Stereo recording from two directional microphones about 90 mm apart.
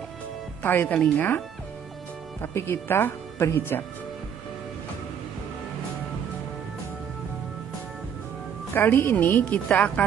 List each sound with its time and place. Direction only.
0.6 s speech: 20° left (ahead or behind)
2.4 s speech: 30° left (ahead or behind)
8.7 s speech: 25° left (ahead or behind)